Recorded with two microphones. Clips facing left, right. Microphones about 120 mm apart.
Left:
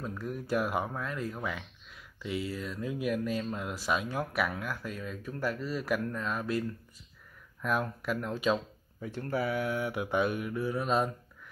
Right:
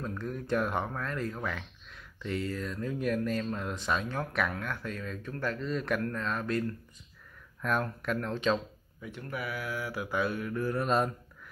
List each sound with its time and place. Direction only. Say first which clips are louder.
0.0 s speech: right 1 dB; 5° left (ahead or behind)
7.6 s speech: even; 5° left (ahead or behind)
9.0 s mantra: left 6 dB; 35° left (ahead or behind); by 10.6 s 15° left (ahead or behind)
10.6 s speech: right 1 dB; centre (ahead or behind)